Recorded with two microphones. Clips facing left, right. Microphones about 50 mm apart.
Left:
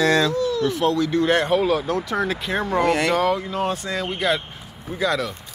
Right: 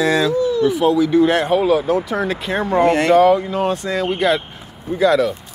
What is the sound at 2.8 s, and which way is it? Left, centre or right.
Speech, right.